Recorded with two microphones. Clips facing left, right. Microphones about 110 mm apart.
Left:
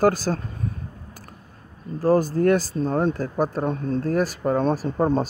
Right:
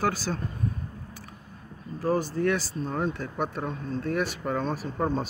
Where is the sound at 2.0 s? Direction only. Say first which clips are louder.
Left 7 dB; 40° left (ahead or behind).